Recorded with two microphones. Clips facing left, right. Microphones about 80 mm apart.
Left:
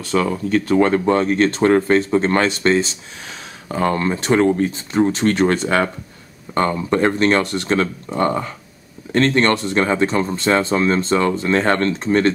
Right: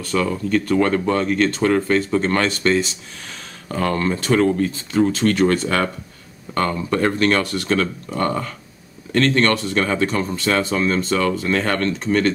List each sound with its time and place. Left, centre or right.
0.0 s speech: left
3.6 s speech: centre